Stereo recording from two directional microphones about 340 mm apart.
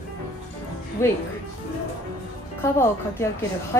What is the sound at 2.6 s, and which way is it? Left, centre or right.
Speech, centre.